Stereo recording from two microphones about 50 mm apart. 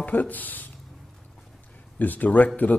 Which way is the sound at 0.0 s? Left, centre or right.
Left.